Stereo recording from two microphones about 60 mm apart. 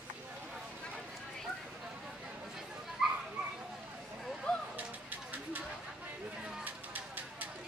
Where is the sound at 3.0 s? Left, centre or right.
Centre.